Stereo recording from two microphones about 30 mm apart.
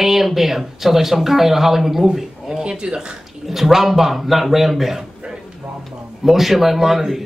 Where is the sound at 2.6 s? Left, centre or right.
Right.